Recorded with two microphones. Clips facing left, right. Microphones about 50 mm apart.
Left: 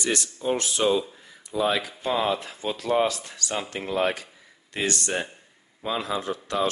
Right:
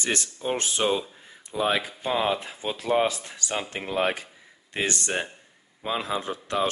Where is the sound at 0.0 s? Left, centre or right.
Right.